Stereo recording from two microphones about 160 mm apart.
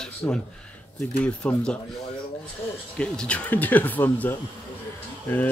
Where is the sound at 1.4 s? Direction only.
5° left (ahead or behind).